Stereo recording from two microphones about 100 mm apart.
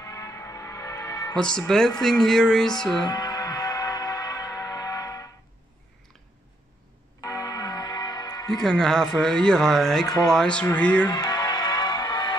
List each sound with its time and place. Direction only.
0.0 s a sound: 30° left (ahead or behind)
1.3 s speech: 10° left (ahead or behind)
3.0 s a sound: 40° left (ahead or behind)
7.2 s church bell: 40° left (ahead or behind)
8.6 s speech: 5° left (ahead or behind)
11.1 s music: 45° left (ahead or behind)